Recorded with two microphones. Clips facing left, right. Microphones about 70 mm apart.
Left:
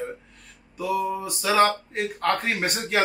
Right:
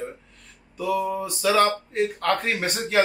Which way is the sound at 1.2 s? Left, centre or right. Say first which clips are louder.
Even; centre.